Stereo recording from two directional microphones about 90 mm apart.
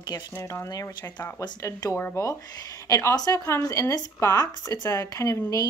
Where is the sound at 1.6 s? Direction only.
35° left (ahead or behind).